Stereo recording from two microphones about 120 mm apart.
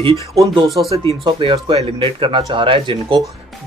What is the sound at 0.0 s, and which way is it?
Speech, 45° right (ahead or behind).